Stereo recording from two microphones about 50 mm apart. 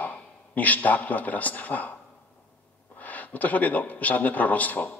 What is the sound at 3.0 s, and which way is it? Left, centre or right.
Speech, left.